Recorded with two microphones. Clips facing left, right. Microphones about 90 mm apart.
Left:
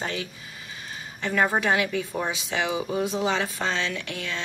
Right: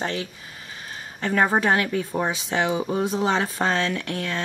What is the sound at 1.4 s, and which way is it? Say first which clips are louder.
Speech: right 2 dB; 35° right (ahead or behind).